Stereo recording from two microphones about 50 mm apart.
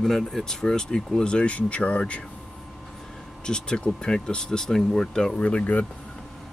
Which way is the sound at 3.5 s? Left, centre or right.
Centre.